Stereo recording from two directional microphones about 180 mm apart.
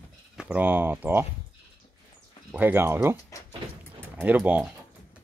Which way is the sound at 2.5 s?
10° right (ahead or behind).